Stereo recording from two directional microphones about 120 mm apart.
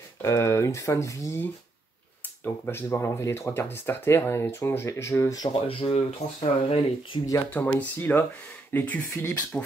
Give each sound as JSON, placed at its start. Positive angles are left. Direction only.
{"t": 0.2, "sound": "speech", "side_deg": 25}
{"t": 2.4, "sound": "speech", "side_deg": 15}
{"t": 5.5, "sound": "speech", "side_deg": 50}
{"t": 7.5, "sound": "speech", "side_deg": 15}